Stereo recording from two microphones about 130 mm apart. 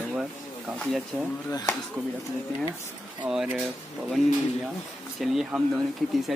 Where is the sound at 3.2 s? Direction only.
5° right (ahead or behind).